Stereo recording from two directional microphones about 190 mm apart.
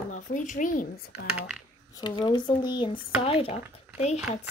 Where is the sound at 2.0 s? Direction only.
25° left (ahead or behind).